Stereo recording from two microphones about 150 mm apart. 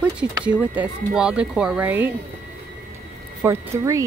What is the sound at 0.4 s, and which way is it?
Speech, 10° right (ahead or behind).